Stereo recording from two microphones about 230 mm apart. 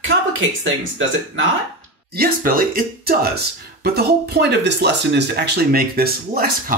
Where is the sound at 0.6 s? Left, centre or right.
Right.